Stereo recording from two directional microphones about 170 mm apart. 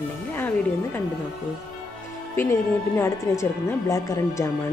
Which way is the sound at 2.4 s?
15° left (ahead or behind).